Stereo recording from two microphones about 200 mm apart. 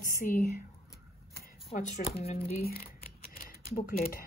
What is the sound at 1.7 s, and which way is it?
Speech, 30° left (ahead or behind).